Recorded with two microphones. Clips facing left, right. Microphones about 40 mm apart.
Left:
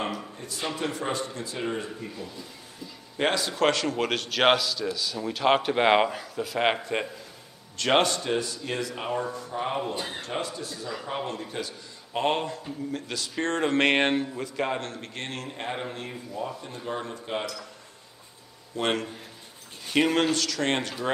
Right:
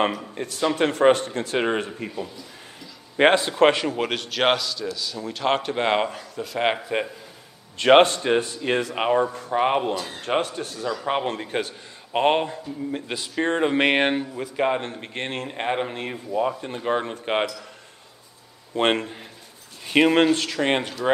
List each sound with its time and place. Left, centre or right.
0.3 s speech: right
3.2 s a man's voice: right
3.7 s speech: centre
7.7 s a man's voice: right
9.9 s speech: left
10.2 s a man's voice: right
18.8 s a man's voice: right